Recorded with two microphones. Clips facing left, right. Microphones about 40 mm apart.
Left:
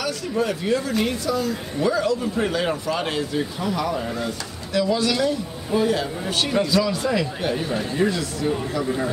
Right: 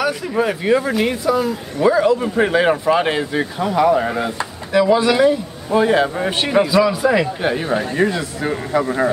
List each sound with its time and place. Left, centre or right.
0.4 s speech: right
5.8 s a man's voice: right
8.8 s speech: right